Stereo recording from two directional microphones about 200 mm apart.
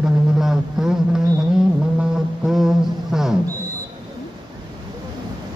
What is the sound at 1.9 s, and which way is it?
Music, centre (ahead or behind).